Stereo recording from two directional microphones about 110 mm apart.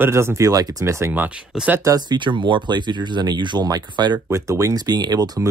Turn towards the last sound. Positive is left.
turn(degrees=-35)  # may be behind; listen again after turning